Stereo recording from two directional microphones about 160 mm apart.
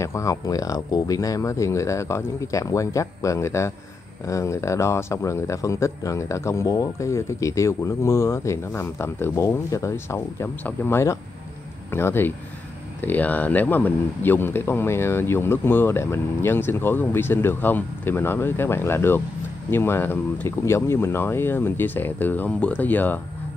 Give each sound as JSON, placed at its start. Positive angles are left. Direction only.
{"t": 0.0, "sound": "speech", "side_deg": 20}